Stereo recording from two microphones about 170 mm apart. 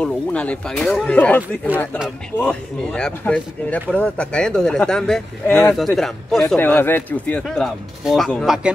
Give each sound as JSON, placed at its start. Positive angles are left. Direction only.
{"t": 0.0, "sound": "speech", "side_deg": 5}